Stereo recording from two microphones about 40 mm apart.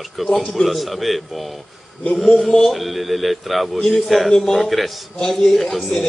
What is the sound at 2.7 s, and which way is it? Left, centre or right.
A man's voice, centre.